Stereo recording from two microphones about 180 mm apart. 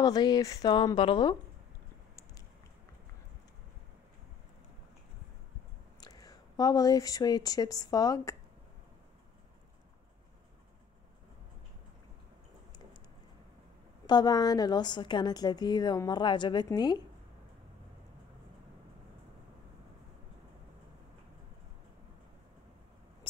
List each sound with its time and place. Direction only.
0.0 s a woman's voice: 20° left (ahead or behind)
5.9 s speech: 20° left (ahead or behind)
14.0 s a woman's voice: 25° left (ahead or behind)